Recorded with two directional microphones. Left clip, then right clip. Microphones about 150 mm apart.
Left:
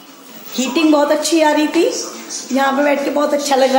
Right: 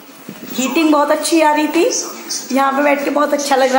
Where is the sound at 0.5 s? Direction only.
5° right (ahead or behind).